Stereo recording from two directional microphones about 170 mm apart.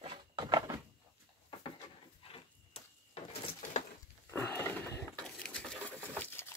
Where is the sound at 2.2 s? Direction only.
35° left (ahead or behind).